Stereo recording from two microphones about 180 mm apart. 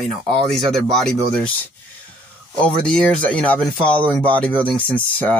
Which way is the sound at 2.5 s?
5° left (ahead or behind).